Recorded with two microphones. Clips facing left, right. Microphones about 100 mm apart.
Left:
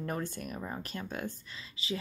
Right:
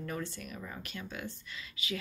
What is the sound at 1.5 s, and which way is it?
Speech, 30° left (ahead or behind).